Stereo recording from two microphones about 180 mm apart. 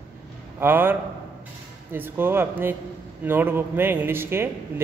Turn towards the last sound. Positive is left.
turn(degrees=-15)  # may be behind; listen again after turning